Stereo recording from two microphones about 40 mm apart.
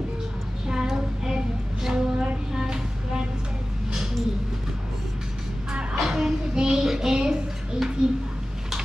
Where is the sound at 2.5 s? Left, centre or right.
Centre.